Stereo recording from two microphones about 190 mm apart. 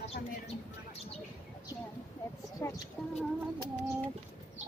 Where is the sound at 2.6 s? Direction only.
10° left (ahead or behind).